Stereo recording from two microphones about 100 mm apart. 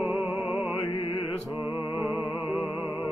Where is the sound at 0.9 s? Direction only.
55° left (ahead or behind).